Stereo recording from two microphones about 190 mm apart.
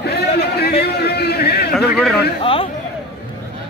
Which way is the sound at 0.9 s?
60° left (ahead or behind).